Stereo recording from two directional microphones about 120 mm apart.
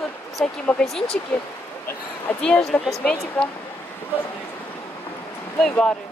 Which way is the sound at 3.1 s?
25° left (ahead or behind).